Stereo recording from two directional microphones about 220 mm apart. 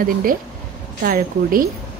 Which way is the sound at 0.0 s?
40° right (ahead or behind).